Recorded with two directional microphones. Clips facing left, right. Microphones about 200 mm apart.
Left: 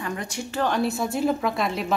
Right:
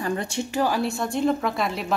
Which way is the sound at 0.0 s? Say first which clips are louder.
Right 4 dB; 30° right (ahead or behind).